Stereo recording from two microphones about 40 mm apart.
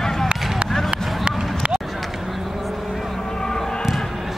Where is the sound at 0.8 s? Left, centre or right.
Right.